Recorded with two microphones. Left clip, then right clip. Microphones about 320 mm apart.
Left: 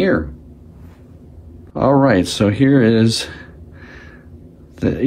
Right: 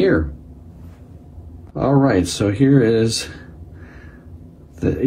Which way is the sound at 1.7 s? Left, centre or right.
Left.